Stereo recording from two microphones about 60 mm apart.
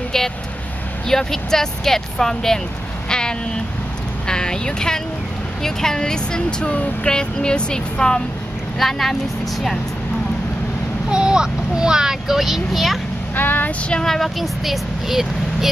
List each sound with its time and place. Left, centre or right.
1.0 s speech: centre
3.1 s a sound: centre
4.3 s vehicle: centre
5.6 s speech: centre
11.1 s a child's voice: centre
13.4 s speech: left
14.0 s speech: centre